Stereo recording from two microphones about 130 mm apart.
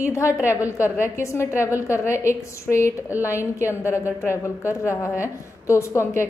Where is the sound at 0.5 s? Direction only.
25° left (ahead or behind).